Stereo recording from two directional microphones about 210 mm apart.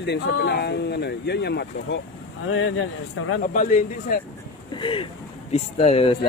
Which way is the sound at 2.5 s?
70° left (ahead or behind).